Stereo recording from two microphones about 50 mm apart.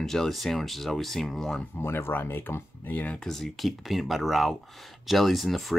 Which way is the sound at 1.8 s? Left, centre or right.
Left.